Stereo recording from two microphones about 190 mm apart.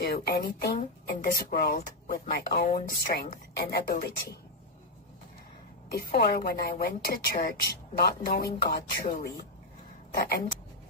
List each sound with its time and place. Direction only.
0.0 s speech: 55° left (ahead or behind)
5.9 s speech: 55° left (ahead or behind)